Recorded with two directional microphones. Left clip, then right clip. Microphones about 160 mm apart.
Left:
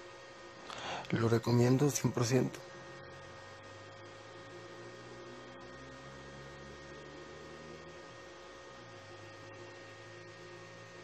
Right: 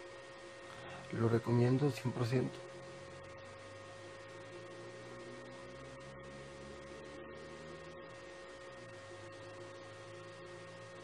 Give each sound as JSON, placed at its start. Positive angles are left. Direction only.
{"t": 1.1, "sound": "speech", "side_deg": 40}